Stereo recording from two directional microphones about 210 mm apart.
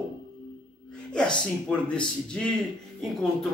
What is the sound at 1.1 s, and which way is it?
Speech, 5° left (ahead or behind).